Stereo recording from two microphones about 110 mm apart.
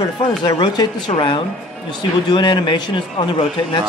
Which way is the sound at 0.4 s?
40° left (ahead or behind).